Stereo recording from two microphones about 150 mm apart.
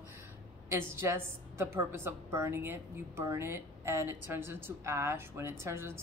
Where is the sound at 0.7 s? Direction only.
20° right (ahead or behind).